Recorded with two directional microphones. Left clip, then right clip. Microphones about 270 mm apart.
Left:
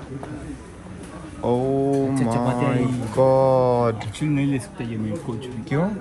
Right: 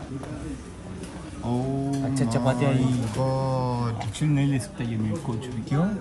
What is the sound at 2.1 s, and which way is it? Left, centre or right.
Speech, centre.